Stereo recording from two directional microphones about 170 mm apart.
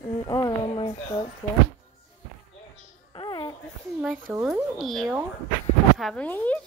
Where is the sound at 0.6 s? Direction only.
35° left (ahead or behind).